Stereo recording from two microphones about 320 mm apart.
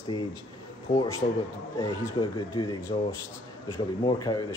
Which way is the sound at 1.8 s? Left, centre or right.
Centre.